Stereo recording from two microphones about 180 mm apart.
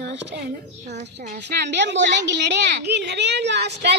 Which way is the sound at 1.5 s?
75° right (ahead or behind).